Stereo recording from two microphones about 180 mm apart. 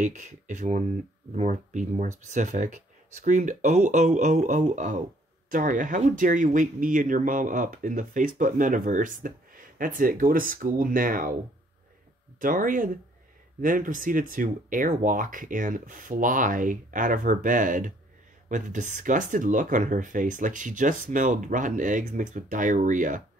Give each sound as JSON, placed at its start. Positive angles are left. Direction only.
{"t": 0.0, "sound": "speech", "side_deg": -40}
{"t": 12.4, "sound": "speech", "side_deg": -50}